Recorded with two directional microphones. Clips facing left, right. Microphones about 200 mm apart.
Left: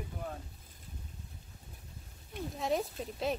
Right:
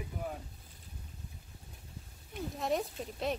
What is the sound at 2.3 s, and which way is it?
A woman's voice, centre (ahead or behind).